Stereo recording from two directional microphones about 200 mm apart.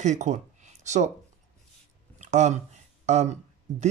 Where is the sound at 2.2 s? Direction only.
35° right (ahead or behind).